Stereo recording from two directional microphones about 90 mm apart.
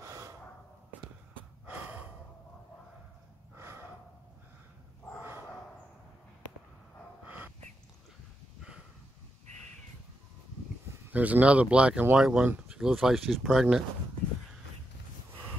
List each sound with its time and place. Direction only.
0.0 s gasp: 35° right (ahead or behind)
1.7 s gasp: 20° right (ahead or behind)
3.5 s gasp: 30° right (ahead or behind)
7.2 s dog: 20° right (ahead or behind)
11.1 s speech: 20° right (ahead or behind); by 13.8 s 5° right (ahead or behind)